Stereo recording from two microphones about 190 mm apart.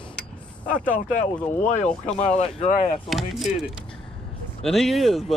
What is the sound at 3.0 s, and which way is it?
Speech, centre (ahead or behind).